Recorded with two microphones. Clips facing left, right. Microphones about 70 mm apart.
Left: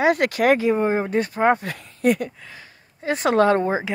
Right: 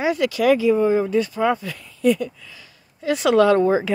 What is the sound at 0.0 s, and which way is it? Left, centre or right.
Speech, left.